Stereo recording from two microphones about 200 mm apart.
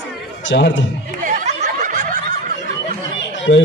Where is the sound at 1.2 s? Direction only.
40° right (ahead or behind).